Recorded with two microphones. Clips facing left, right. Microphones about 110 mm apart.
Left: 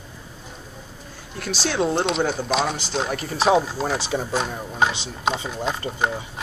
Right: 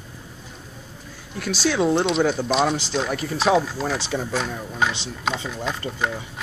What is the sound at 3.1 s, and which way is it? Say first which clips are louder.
Speech: left 1 dB; 5° left (ahead or behind).